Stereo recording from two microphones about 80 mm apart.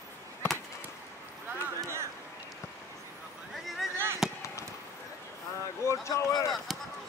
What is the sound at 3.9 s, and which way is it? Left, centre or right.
Basketball bounce, right.